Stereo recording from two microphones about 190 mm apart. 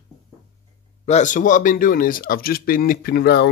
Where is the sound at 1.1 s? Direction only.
40° left (ahead or behind); by 3.5 s 60° left (ahead or behind).